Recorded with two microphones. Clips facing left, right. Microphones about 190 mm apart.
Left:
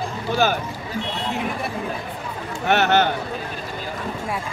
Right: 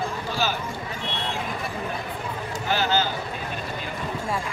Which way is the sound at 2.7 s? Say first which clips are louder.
Left 6 dB; 70° left (ahead or behind).